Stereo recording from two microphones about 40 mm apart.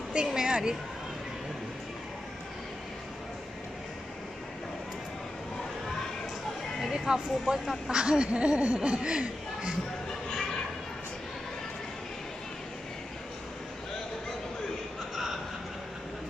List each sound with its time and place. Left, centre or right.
0.1 s speech: right
6.9 s speech: centre